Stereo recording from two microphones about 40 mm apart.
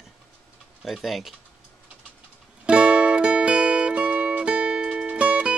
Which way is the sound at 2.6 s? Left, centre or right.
Right.